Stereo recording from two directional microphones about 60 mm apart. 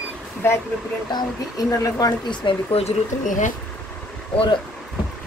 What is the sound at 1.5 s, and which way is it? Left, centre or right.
Speech, left.